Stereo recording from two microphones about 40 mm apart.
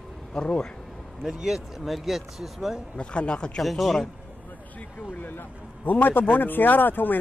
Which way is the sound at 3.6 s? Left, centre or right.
Centre.